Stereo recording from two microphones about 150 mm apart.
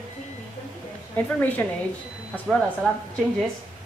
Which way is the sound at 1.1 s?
10° left (ahead or behind).